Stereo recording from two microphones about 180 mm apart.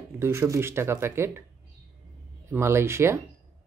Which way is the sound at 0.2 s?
15° right (ahead or behind).